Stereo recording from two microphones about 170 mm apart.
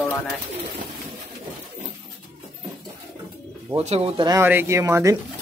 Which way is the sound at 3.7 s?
35° right (ahead or behind).